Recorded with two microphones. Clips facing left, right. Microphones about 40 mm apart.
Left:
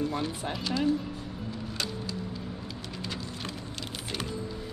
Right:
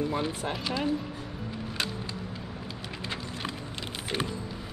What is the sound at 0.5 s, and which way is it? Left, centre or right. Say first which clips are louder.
Speech: even; centre.